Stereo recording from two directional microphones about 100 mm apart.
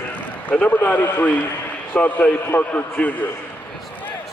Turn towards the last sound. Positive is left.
turn(degrees=15)  # may be behind; listen again after turning